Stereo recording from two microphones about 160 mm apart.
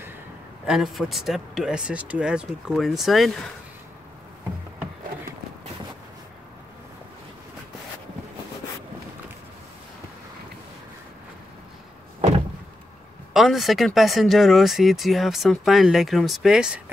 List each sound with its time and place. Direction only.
0.7 s speech: centre (ahead or behind)
13.3 s speech: centre (ahead or behind)